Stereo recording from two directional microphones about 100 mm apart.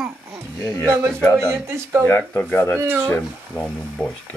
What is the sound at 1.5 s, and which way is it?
Speech, 25° right (ahead or behind).